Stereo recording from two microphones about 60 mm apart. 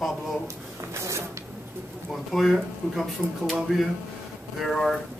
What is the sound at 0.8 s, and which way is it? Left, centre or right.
Printer, right.